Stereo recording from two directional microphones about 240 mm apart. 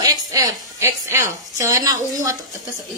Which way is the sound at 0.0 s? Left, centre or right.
Centre.